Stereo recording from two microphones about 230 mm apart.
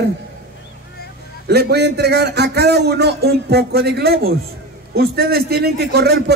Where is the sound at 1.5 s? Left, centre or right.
Right.